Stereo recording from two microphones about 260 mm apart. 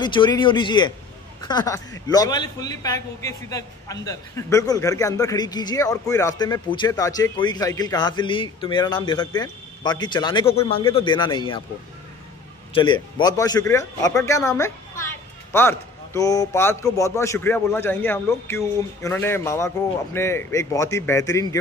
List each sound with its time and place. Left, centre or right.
0.0 s a man's voice: centre
12.7 s a man's voice: centre